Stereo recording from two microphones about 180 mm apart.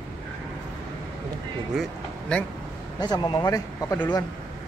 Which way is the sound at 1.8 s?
5° left (ahead or behind).